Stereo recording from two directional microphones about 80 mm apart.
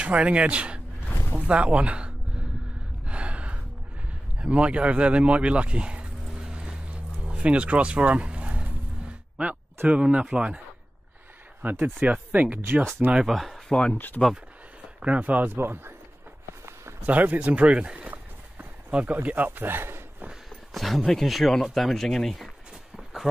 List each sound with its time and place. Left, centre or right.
0.0 s speech: centre
3.1 s gasp: centre
4.4 s speech: centre
7.2 s a sound: centre
9.8 s speech: centre
11.6 s speech: right
13.2 s speech: centre
13.9 s speech: left
15.0 s a man's voice: centre
17.0 s speech: centre
20.7 s speech: centre